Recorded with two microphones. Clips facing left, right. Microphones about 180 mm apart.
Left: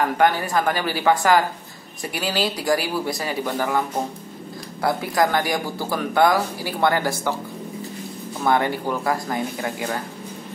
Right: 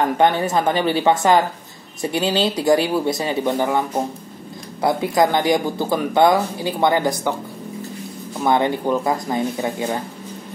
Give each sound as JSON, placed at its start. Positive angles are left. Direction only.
{"t": 0.2, "sound": "speech", "side_deg": -25}
{"t": 4.8, "sound": "speech", "side_deg": -20}
{"t": 8.5, "sound": "speech", "side_deg": -20}